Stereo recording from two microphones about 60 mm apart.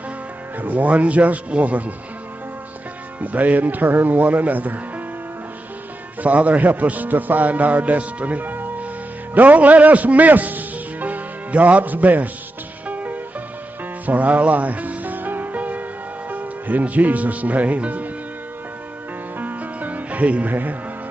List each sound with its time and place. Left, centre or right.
0.6 s a man's voice: right
3.2 s a man's voice: right
6.2 s a man's voice: right
12.8 s music: right
16.3 s a man's voice: right
19.3 s music: right